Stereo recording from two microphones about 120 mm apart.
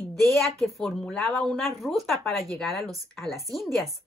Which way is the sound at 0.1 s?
Centre (ahead or behind).